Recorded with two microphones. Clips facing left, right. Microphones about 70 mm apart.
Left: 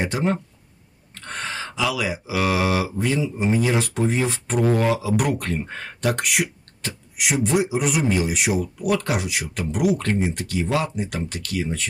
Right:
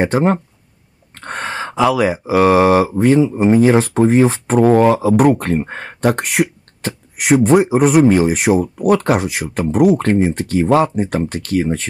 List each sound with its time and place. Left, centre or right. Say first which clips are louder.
0.0 s speech: right 8 dB; right